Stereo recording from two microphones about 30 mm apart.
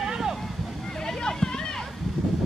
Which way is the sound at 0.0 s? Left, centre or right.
Right.